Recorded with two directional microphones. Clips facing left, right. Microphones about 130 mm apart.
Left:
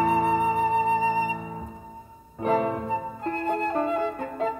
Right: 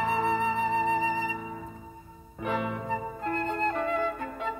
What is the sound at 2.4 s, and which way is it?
Music, 40° left (ahead or behind).